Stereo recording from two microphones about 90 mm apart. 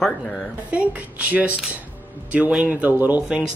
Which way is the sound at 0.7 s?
15° right (ahead or behind).